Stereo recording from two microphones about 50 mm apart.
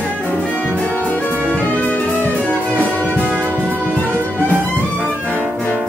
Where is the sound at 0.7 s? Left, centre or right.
Left.